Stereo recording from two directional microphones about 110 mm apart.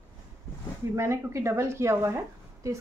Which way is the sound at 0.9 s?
25° right (ahead or behind).